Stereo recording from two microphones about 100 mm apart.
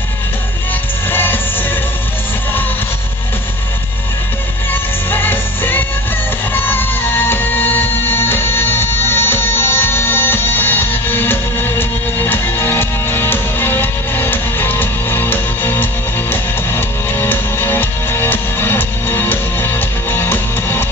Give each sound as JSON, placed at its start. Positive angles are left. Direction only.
{"t": 1.1, "sound": "music", "side_deg": 20}
{"t": 5.1, "sound": "music", "side_deg": 20}